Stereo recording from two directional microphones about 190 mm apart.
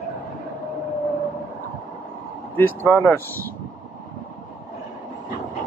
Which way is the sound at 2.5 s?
10° left (ahead or behind).